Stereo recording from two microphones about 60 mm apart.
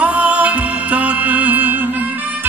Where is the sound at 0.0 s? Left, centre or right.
Right.